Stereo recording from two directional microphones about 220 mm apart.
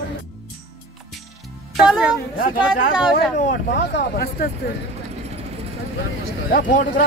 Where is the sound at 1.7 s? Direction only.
5° right (ahead or behind).